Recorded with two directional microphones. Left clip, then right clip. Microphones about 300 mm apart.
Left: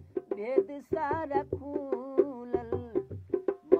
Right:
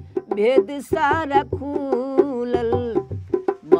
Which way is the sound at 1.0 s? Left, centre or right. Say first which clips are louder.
Right 12 dB; right.